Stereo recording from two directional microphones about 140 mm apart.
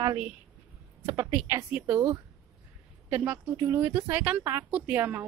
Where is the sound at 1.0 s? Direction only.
15° right (ahead or behind).